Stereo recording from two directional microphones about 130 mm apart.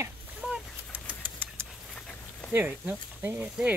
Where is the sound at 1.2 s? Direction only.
15° right (ahead or behind).